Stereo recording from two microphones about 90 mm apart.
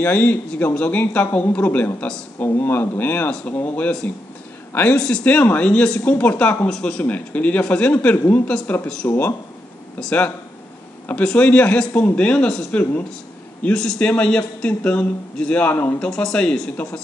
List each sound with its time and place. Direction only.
0.0 s a man's voice: 20° left (ahead or behind)
2.3 s a man's voice: 25° left (ahead or behind)
16.0 s a man's voice: 10° left (ahead or behind)